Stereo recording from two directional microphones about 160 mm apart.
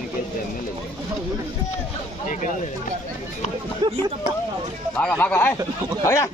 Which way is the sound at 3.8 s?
30° right (ahead or behind).